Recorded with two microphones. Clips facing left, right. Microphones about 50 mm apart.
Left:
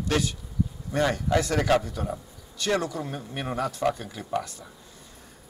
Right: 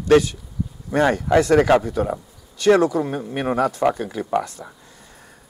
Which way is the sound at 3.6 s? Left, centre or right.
Centre.